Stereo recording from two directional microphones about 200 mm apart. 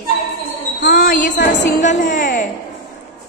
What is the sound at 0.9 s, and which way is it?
A woman's voice, 40° left (ahead or behind).